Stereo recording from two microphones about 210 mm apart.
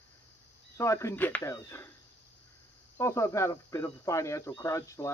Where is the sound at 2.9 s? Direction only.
15° left (ahead or behind).